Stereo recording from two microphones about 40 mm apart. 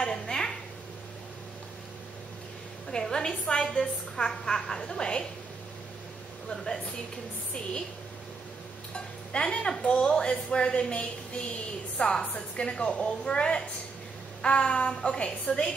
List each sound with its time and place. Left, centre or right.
0.0 s a sound: centre
2.9 s a woman's voice: centre
6.5 s a woman's voice: centre
8.9 s cowbell: left
10.0 s a woman's voice: left